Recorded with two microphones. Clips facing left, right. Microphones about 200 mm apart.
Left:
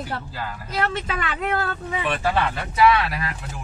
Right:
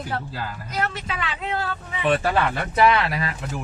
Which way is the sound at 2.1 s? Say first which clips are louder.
Right 3 dB; 50° right (ahead or behind).